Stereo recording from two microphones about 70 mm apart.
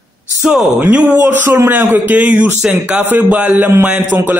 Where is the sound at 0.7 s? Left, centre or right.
Right.